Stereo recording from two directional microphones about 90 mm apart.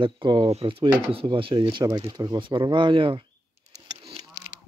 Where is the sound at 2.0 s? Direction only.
50° right (ahead or behind).